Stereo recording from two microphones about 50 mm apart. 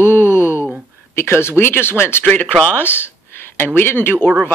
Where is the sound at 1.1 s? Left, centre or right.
Left.